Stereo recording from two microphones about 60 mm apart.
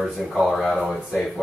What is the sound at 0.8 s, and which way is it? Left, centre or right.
Speech, centre.